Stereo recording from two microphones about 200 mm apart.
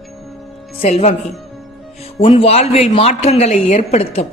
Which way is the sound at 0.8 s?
30° left (ahead or behind).